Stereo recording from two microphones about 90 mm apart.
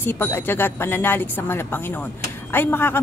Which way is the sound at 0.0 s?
25° left (ahead or behind).